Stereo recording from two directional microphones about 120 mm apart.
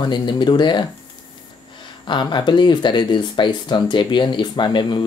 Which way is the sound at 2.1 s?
40° left (ahead or behind).